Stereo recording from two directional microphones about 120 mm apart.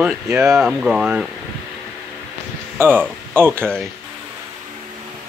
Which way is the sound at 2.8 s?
15° right (ahead or behind).